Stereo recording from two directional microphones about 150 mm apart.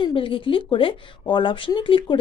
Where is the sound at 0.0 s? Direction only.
35° left (ahead or behind).